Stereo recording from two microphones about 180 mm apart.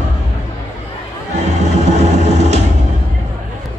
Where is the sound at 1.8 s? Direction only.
40° right (ahead or behind).